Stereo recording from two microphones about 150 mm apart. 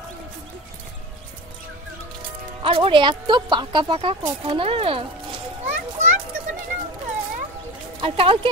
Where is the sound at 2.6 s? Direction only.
35° right (ahead or behind).